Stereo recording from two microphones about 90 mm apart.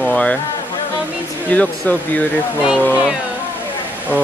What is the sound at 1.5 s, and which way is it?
Speech, 15° left (ahead or behind).